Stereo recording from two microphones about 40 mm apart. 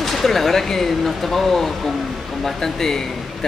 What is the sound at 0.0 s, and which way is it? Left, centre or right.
Speech, centre.